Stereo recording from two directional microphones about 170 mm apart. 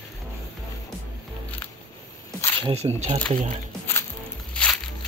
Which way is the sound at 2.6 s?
35° right (ahead or behind).